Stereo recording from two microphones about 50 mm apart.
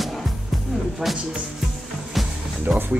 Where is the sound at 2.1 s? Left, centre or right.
Centre.